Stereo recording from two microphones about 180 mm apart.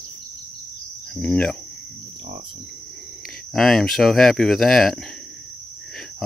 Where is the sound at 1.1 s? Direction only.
5° left (ahead or behind).